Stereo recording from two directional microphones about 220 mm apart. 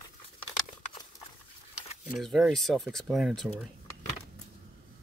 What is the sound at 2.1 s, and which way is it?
Speech, centre (ahead or behind).